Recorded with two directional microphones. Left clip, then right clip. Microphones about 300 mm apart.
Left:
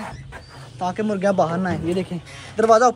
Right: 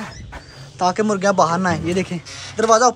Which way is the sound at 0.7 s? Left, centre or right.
Centre.